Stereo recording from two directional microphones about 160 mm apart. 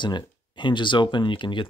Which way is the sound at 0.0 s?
30° left (ahead or behind).